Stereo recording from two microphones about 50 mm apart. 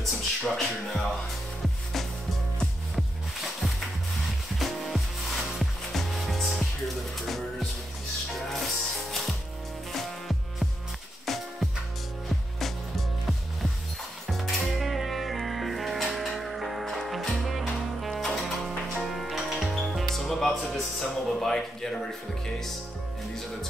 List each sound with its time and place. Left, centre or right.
0.0 s music: centre
2.6 s music: centre
8.6 s music: centre
11.2 s music: centre
21.4 s a sound: centre